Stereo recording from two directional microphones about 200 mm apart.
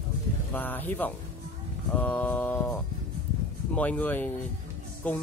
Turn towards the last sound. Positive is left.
turn(degrees=10)  # may be behind; listen again after turning